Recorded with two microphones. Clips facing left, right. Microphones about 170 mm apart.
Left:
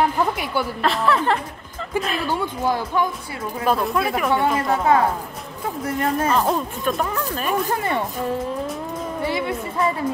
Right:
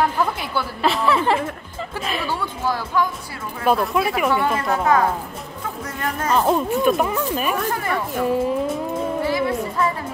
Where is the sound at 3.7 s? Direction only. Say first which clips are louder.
Right 2 dB; centre (ahead or behind).